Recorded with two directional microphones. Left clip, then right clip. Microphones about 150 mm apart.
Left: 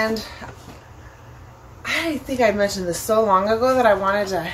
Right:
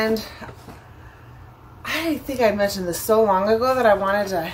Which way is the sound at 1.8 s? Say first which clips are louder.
Left 1 dB; 35° right (ahead or behind).